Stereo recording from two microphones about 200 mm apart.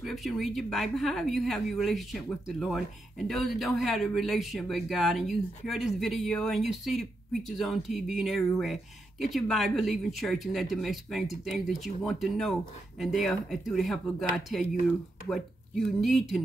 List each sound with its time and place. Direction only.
0.0 s speech: centre (ahead or behind)